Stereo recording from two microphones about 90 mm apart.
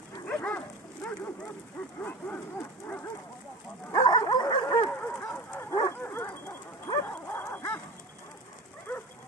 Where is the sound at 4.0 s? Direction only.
50° left (ahead or behind).